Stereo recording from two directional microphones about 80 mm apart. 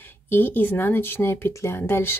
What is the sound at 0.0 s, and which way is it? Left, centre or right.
Speech, left.